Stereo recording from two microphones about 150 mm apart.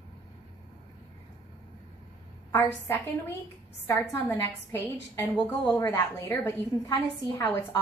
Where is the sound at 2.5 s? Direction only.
20° left (ahead or behind).